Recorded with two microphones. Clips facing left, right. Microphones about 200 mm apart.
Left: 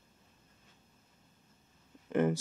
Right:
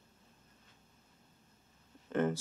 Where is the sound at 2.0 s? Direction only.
15° left (ahead or behind).